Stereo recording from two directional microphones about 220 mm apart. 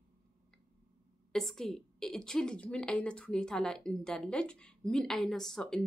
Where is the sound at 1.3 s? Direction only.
Centre (ahead or behind).